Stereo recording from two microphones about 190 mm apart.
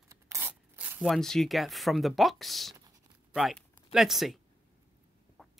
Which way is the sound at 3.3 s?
Centre (ahead or behind).